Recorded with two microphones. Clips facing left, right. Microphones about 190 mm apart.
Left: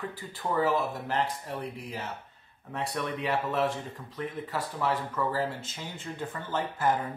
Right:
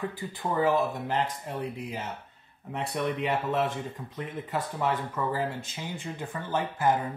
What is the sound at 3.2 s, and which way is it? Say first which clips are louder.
Speech: left 2 dB; 20° right (ahead or behind).